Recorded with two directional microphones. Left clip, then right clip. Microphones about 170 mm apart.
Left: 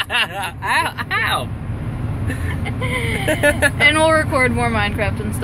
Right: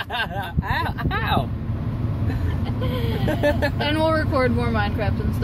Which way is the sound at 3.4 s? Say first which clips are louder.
Left 4 dB; 20° right (ahead or behind).